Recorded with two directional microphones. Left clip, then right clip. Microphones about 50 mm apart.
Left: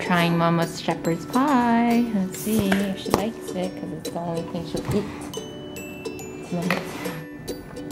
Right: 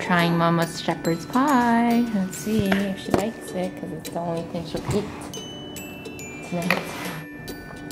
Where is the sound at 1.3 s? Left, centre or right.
Right.